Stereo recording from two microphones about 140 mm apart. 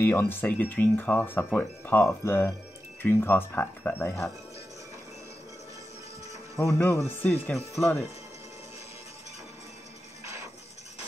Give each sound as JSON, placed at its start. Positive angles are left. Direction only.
{"t": 0.0, "sound": "speech", "side_deg": 15}
{"t": 6.5, "sound": "speech", "side_deg": 20}
{"t": 7.4, "sound": "speech", "side_deg": 0}
{"t": 10.2, "sound": "a sound", "side_deg": -20}